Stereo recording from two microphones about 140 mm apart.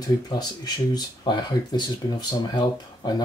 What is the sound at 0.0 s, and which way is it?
Speech, 30° left (ahead or behind).